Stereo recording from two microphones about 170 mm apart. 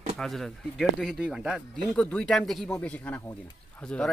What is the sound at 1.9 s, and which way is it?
Speech, 5° left (ahead or behind).